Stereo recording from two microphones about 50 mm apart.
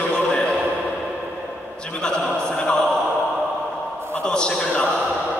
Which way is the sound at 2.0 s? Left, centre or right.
Centre.